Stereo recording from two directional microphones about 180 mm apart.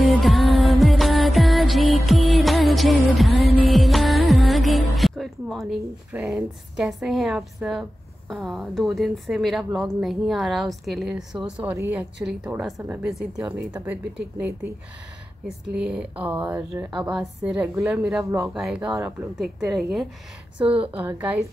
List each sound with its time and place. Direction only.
0.0 s music: centre (ahead or behind)
8.3 s a woman's voice: centre (ahead or behind)
15.4 s a woman's voice: 5° right (ahead or behind)